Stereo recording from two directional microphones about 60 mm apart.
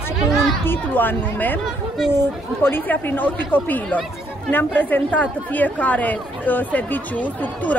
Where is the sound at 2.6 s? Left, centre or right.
Left.